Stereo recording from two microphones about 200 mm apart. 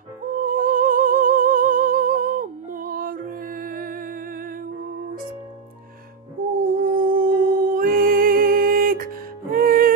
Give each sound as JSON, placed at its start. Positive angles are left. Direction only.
{"t": 0.3, "sound": "music", "side_deg": -40}
{"t": 6.6, "sound": "music", "side_deg": -45}